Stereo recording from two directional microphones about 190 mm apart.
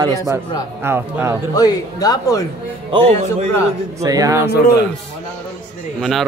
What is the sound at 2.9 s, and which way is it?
Speech, 30° right (ahead or behind).